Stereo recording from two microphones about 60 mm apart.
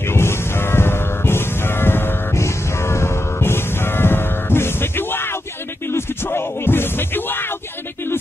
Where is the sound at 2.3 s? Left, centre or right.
Left.